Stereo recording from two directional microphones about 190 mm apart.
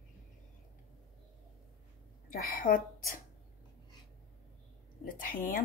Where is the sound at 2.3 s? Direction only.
50° left (ahead or behind).